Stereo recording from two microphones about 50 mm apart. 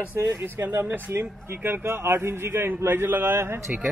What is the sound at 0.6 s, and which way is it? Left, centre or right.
Speech, right.